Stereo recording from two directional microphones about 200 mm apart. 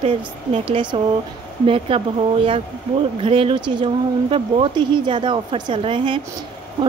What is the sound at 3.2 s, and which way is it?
Speech, 25° right (ahead or behind).